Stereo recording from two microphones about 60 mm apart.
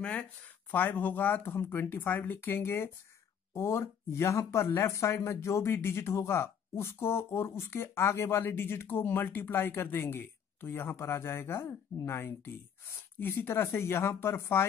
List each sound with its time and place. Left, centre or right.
0.0 s speech: centre; by 14.7 s left